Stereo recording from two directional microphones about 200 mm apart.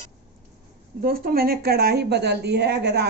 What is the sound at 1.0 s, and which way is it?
A woman's voice, 50° right (ahead or behind).